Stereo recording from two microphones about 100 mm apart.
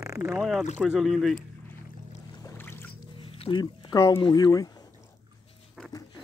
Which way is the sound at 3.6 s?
40° left (ahead or behind).